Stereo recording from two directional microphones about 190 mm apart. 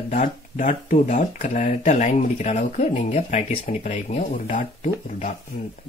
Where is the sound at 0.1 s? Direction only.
45° left (ahead or behind).